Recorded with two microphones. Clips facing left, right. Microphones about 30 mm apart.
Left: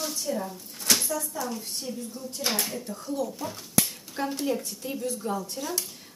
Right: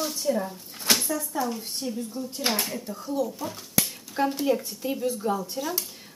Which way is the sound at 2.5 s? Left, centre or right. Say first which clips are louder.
Even; centre.